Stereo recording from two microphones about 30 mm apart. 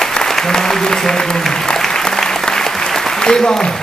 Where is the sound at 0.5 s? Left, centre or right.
Centre.